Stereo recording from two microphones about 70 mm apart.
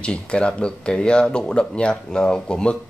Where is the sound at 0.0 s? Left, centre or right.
Centre.